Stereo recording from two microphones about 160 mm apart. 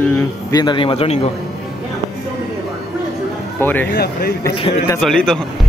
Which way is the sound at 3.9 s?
90° left.